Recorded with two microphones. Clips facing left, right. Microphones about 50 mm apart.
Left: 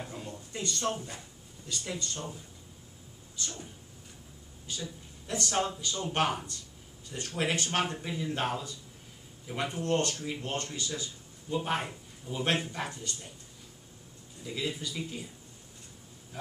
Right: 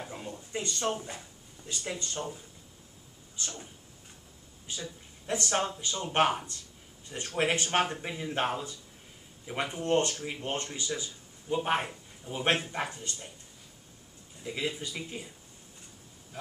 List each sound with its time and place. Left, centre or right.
0.1 s a sound: right
1.7 s speech: right
4.7 s speech: right
14.4 s speech: right